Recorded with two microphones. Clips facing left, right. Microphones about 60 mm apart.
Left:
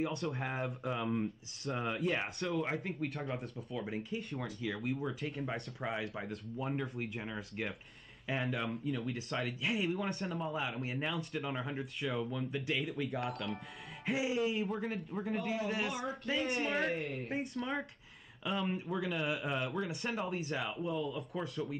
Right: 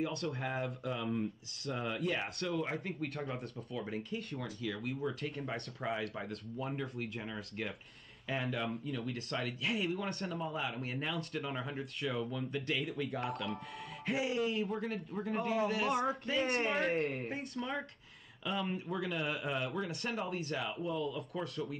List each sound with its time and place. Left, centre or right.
0.2 s speech: centre
0.8 s speech: centre
2.2 s speech: centre